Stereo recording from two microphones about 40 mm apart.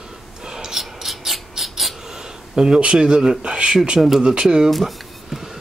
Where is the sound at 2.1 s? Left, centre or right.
Centre.